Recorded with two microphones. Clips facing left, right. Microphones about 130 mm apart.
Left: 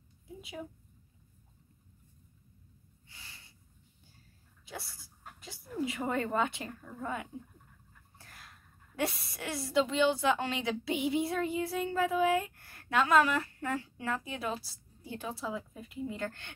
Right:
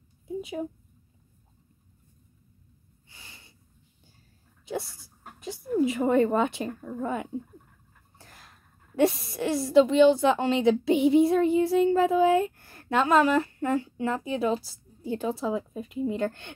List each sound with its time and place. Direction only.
3.2 s snort: 25° right (ahead or behind)
5.4 s a woman's voice: 25° right (ahead or behind)
8.2 s a sound: 25° right (ahead or behind)
8.9 s a woman's voice: 25° right (ahead or behind)